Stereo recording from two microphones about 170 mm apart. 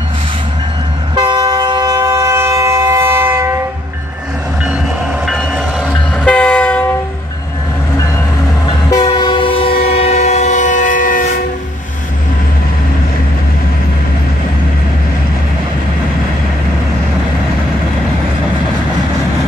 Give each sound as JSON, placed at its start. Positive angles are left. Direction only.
{"t": 1.1, "sound": "train", "side_deg": -25}
{"t": 5.2, "sound": "train", "side_deg": 0}
{"t": 8.6, "sound": "train", "side_deg": 25}